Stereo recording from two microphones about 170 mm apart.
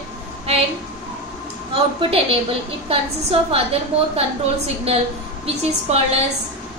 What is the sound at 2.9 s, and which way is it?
A woman's voice, 35° right (ahead or behind).